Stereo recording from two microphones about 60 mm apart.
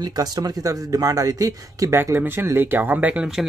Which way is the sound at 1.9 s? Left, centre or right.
Right.